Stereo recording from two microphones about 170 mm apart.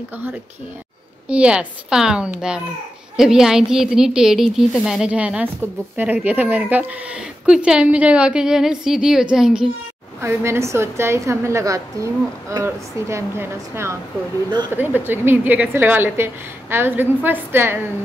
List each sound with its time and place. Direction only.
1.3 s a woman's voice: 5° right (ahead or behind)
10.2 s a woman's voice: 15° right (ahead or behind)